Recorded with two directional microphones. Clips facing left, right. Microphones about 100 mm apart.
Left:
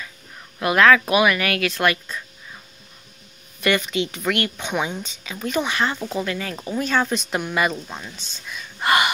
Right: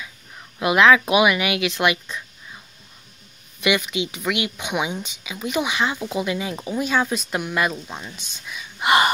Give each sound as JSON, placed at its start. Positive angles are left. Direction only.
{"t": 0.6, "sound": "speech", "side_deg": -15}
{"t": 3.6, "sound": "speech", "side_deg": -10}
{"t": 7.9, "sound": "speech", "side_deg": -15}
{"t": 8.5, "sound": "gasp", "side_deg": -5}